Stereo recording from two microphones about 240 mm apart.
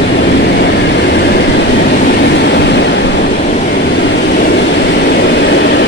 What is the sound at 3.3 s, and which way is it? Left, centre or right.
Vehicle, left.